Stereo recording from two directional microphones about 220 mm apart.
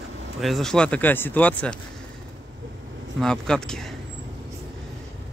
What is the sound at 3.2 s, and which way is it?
Speech, 5° left (ahead or behind).